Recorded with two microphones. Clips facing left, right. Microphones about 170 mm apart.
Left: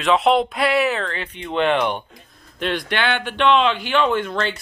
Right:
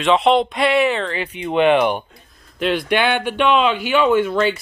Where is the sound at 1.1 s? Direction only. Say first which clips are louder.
Right 4 dB; 10° right (ahead or behind).